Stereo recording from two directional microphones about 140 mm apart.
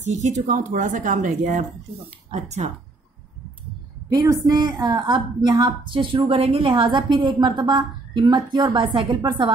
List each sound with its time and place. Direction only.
0.0 s speech: 55° right (ahead or behind)
2.3 s speech: 55° right (ahead or behind)
4.1 s a woman's voice: 25° right (ahead or behind)